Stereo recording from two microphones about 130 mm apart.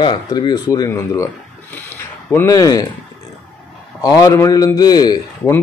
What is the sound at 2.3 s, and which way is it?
Speech, 25° left (ahead or behind).